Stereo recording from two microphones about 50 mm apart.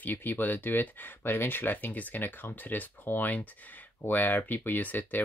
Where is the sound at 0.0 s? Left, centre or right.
Left.